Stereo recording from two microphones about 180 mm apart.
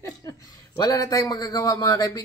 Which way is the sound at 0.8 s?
20° left (ahead or behind).